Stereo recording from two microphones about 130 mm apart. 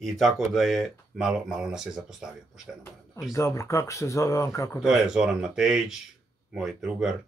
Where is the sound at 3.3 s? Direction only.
20° left (ahead or behind).